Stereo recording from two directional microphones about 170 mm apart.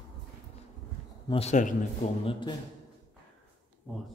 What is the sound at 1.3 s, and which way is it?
Speech, 40° left (ahead or behind).